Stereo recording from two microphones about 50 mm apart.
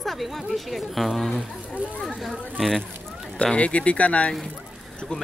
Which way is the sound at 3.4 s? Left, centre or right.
Left.